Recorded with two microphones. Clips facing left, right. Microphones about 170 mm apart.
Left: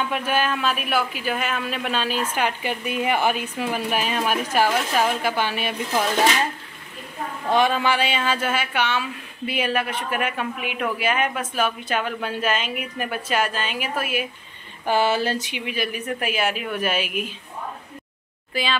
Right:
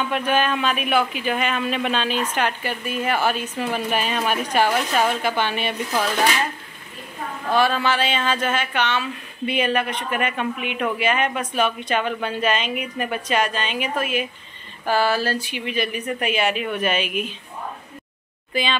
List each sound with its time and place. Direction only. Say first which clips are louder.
0.1 s speech: right 2 dB; 10° left (ahead or behind)
6.0 s speech: left 2 dB; 25° left (ahead or behind)
7.4 s speech: even; 20° left (ahead or behind)
14.9 s speech: even; 20° left (ahead or behind)
18.5 s speech: right 1 dB; centre (ahead or behind)